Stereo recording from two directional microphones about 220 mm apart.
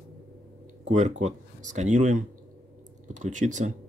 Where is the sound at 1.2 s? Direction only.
35° right (ahead or behind).